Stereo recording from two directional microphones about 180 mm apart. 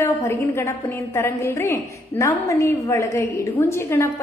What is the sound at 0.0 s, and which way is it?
A woman's voice, 15° left (ahead or behind).